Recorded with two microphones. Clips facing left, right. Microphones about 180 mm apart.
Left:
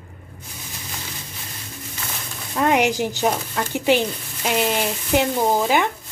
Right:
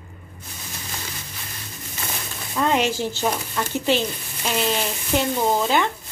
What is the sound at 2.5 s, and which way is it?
A woman's voice, 15° left (ahead or behind).